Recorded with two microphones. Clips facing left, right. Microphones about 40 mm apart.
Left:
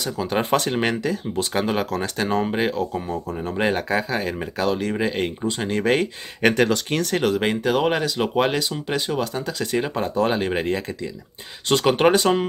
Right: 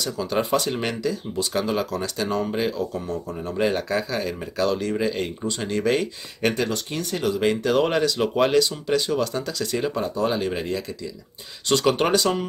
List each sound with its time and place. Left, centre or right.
0.0 s speech: left
0.4 s speech: left
0.7 s speech: left
2.9 s speech: left
5.4 s speech: centre
5.7 s speech: left
6.5 s speech: left
7.2 s speech: left
7.6 s speech: centre; by 10.8 s left
11.7 s speech: left